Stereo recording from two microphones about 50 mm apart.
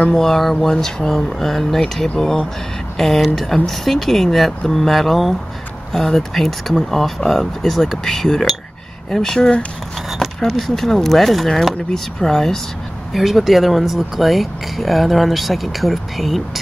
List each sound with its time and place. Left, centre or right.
0.0 s speech: centre
10.0 s speech: centre